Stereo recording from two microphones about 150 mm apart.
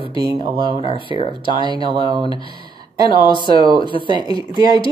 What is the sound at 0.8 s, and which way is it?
Speech, 35° left (ahead or behind).